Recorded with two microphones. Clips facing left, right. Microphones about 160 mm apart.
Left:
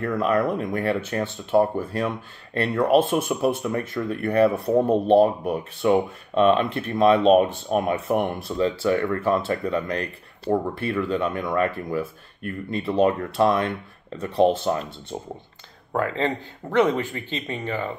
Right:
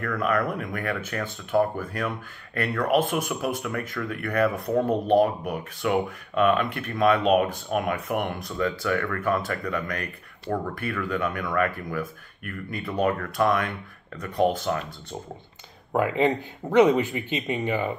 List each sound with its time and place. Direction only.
0.0 s speech: 30° left (ahead or behind)
15.9 s speech: 15° right (ahead or behind)